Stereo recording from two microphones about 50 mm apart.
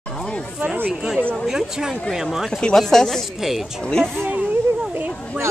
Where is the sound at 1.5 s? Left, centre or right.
Centre.